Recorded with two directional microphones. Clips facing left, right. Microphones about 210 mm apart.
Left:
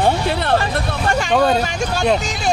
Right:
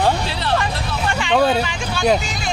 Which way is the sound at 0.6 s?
45° left (ahead or behind).